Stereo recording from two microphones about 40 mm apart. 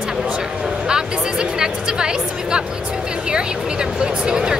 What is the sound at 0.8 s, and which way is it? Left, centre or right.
Speech, right.